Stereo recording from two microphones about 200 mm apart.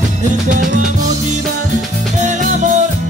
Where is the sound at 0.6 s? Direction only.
40° right (ahead or behind).